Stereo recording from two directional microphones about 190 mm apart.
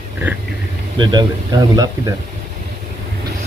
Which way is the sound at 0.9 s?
25° right (ahead or behind).